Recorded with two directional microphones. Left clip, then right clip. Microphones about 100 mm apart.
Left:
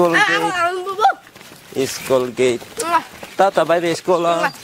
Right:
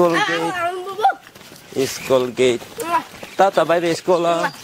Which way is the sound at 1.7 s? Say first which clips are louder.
Even; 5° left (ahead or behind).